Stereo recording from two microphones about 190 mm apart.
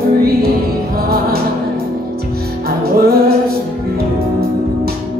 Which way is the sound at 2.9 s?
55° right (ahead or behind).